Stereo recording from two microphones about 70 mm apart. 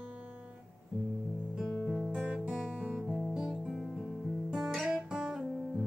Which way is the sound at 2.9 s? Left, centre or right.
Centre.